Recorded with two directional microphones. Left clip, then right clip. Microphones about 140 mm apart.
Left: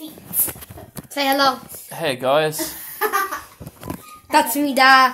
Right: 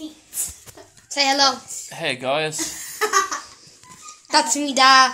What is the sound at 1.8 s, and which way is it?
Speech, 10° left (ahead or behind).